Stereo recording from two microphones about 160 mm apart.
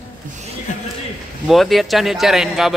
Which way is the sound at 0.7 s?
50° left (ahead or behind).